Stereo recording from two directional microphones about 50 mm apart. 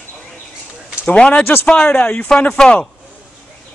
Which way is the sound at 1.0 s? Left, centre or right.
Left.